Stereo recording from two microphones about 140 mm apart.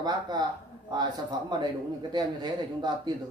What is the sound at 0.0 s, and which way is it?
Speech, 30° right (ahead or behind).